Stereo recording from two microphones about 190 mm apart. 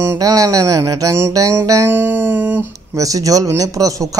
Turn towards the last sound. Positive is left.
turn(degrees=-20)  # may be behind; listen again after turning